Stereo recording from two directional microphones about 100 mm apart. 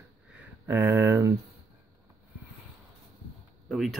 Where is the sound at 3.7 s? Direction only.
Centre (ahead or behind).